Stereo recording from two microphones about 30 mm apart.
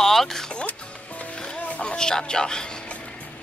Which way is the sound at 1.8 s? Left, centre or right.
Left.